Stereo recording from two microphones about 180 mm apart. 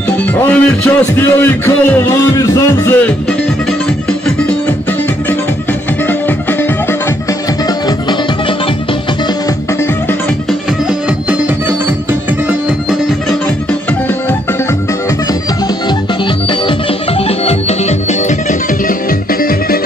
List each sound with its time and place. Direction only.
0.5 s a man's voice: 10° left (ahead or behind)
17.5 s music: 35° left (ahead or behind)